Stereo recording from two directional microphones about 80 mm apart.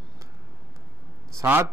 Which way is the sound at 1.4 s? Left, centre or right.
Right.